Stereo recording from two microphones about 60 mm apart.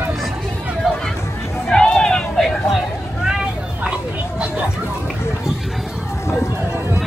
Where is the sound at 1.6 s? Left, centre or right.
Centre.